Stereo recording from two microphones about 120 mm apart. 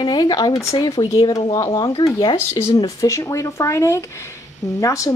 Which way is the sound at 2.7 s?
35° left (ahead or behind).